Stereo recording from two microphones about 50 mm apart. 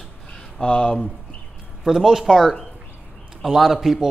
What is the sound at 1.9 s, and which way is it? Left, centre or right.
Speech, centre.